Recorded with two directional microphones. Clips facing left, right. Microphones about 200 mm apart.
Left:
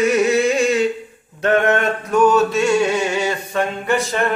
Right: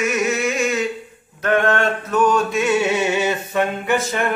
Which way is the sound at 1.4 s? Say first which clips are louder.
Left 2 dB; 25° left (ahead or behind).